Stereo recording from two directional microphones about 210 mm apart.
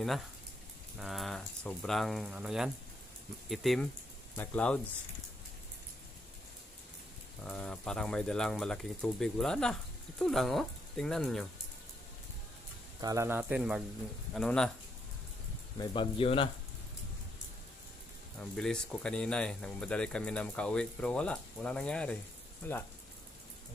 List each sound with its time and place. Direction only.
0.9 s speech: centre (ahead or behind)
7.4 s speech: 5° left (ahead or behind)
13.0 s speech: 15° right (ahead or behind); by 14.7 s 5° left (ahead or behind)
15.8 s speech: 25° left (ahead or behind)
18.4 s speech: 5° left (ahead or behind)